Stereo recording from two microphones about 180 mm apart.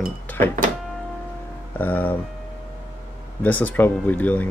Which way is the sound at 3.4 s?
10° left (ahead or behind).